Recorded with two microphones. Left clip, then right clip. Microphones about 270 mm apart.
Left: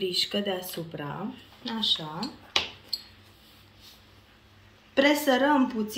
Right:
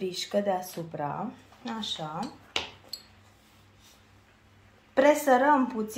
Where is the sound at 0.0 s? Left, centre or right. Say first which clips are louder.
Left 1 dB; right.